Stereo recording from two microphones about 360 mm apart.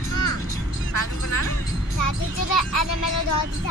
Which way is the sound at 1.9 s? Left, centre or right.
Left.